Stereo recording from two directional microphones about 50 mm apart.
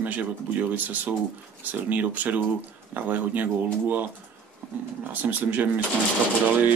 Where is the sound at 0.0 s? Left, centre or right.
Right.